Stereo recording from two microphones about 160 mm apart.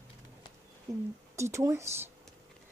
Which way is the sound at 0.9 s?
20° right (ahead or behind).